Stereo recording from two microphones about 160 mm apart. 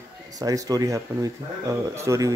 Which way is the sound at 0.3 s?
25° right (ahead or behind).